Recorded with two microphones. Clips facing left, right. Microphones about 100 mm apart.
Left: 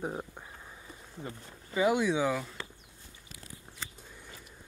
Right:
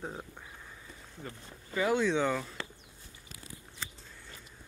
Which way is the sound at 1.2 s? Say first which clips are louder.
Left 2 dB; 15° left (ahead or behind).